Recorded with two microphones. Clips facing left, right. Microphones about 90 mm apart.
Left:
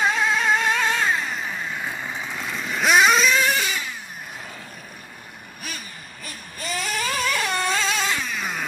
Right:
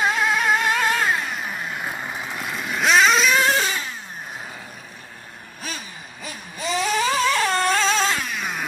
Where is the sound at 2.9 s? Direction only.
5° left (ahead or behind).